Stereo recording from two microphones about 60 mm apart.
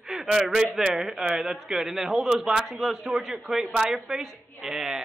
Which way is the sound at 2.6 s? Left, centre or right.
Centre.